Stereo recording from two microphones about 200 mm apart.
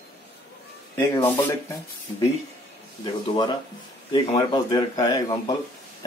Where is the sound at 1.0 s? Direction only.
15° left (ahead or behind).